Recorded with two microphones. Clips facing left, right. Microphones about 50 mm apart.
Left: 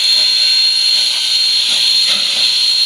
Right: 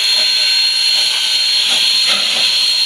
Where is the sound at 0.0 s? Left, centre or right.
Right.